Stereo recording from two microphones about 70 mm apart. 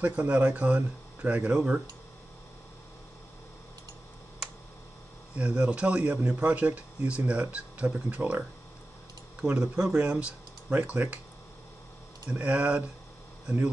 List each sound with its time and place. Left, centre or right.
0.0 s speech: right
5.3 s speech: centre
12.3 s speech: centre